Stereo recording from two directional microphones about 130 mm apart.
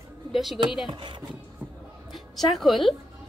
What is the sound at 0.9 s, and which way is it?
Speech, 35° right (ahead or behind).